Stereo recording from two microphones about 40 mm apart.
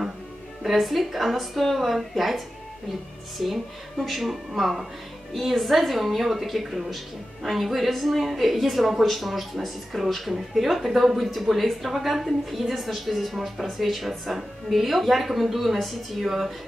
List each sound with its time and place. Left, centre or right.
0.7 s a woman's voice: centre